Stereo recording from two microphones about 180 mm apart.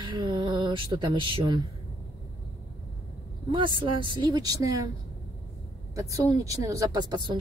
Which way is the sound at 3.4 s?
25° right (ahead or behind).